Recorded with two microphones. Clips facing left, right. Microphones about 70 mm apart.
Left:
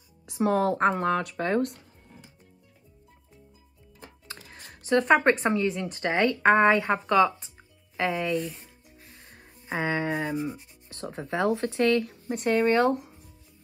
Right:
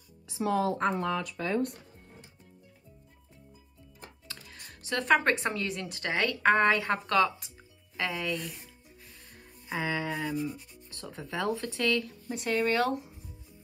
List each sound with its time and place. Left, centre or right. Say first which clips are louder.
0.3 s a woman's voice: left 4 dB; left
4.5 s music: left 10 dB; left
5.5 s speech: left 8 dB; left
5.9 s speech: left 3 dB; left
8.0 s speech: left 6 dB; left
8.3 s speech: left 6 dB; centre
9.3 s speech: left 3 dB; left